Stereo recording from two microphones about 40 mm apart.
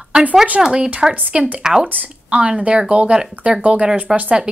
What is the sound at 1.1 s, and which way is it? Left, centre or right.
Speech, right.